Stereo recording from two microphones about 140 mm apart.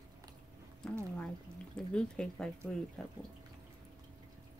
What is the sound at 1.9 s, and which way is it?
Speech, 5° left (ahead or behind).